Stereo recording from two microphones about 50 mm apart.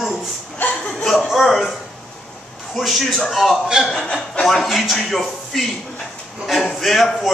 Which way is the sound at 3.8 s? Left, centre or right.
Centre.